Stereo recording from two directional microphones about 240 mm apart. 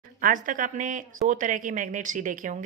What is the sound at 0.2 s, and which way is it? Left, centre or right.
Speech, right.